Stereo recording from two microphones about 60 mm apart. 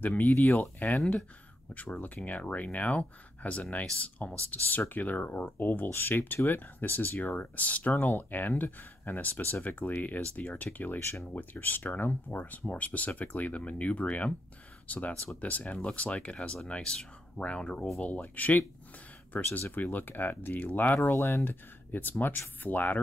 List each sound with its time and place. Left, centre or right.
0.0 s speech: left
19.7 s speech: left
21.2 s speech: left
21.5 s speech: left